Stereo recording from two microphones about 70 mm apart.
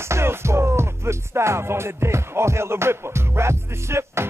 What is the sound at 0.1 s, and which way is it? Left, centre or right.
Music, right.